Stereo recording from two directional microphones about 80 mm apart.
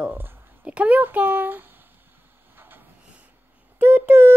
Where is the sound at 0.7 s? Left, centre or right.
Centre.